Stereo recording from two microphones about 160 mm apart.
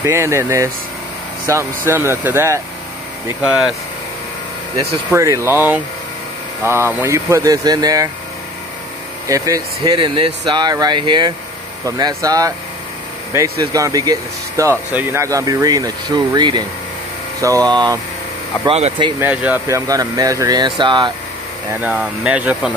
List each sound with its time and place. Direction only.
0.0 s speech: 15° right (ahead or behind)
5.1 s speech: 20° right (ahead or behind)
9.3 s speech: 25° right (ahead or behind)
17.6 s speech: 25° right (ahead or behind)
18.7 s speech: 40° right (ahead or behind)
19.1 s speech: 10° right (ahead or behind)
19.7 s speech: 20° right (ahead or behind)
21.6 s speech: 10° right (ahead or behind)